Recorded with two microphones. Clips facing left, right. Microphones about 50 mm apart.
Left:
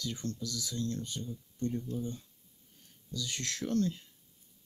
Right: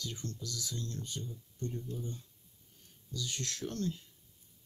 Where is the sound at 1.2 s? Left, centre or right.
Left.